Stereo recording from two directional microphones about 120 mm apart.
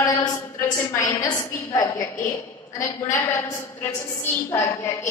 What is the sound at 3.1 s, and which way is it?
A woman's voice, 20° left (ahead or behind).